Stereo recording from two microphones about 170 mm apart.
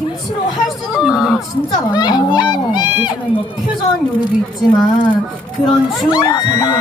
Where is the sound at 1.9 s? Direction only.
25° left (ahead or behind).